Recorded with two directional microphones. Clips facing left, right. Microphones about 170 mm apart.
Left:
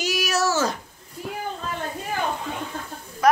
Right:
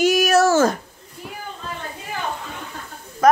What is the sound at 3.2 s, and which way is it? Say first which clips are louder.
Speech: right 4 dB; 45° right (ahead or behind).